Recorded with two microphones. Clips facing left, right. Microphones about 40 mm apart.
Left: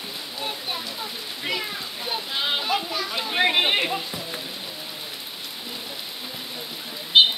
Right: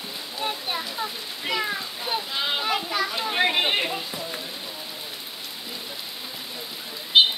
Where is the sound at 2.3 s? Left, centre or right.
Centre.